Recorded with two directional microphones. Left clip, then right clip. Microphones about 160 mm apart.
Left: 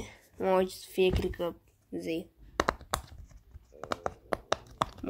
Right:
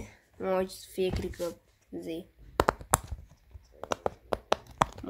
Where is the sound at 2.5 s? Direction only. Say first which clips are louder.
Right 4 dB; 20° right (ahead or behind).